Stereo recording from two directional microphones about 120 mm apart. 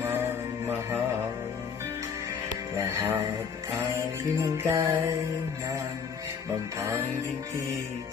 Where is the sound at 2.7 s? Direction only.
25° right (ahead or behind).